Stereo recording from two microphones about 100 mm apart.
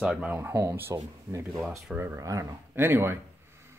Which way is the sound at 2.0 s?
30° right (ahead or behind).